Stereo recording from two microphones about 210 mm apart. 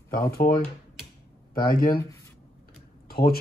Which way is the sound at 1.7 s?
45° left (ahead or behind).